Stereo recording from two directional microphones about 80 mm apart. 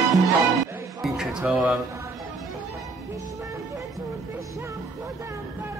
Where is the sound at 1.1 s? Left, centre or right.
Centre.